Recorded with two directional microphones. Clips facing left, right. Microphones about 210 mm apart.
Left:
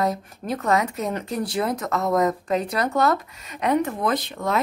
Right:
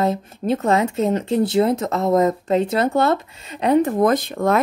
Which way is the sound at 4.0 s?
45° right (ahead or behind).